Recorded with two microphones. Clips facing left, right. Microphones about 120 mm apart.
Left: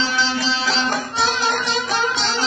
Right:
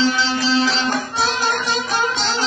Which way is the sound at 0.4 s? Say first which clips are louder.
Right 3 dB; 50° right (ahead or behind).